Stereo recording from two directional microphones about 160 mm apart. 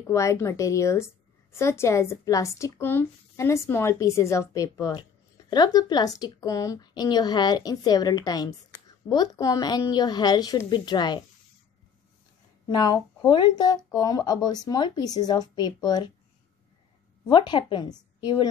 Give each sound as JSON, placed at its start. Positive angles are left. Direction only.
{"t": 0.0, "sound": "a woman's voice", "side_deg": 20}
{"t": 12.6, "sound": "a woman's voice", "side_deg": 25}
{"t": 17.3, "sound": "a woman's voice", "side_deg": 30}